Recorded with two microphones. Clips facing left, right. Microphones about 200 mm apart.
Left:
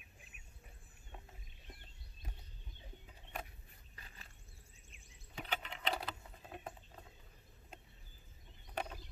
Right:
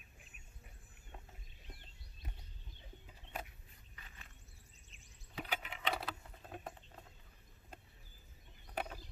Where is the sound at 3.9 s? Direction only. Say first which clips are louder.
Left 1 dB; 35° left (ahead or behind).